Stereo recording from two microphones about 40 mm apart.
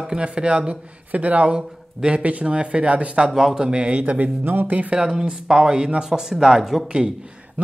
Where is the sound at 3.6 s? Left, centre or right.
Right.